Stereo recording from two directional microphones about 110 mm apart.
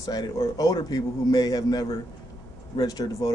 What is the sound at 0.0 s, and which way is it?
Speech, 35° left (ahead or behind).